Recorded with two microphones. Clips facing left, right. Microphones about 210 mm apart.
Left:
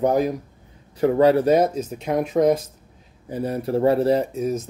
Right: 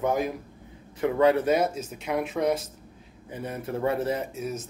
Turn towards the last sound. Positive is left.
turn(degrees=35)  # may be behind; listen again after turning